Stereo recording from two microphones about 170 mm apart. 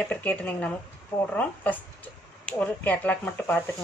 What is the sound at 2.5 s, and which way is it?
Speech, 10° left (ahead or behind).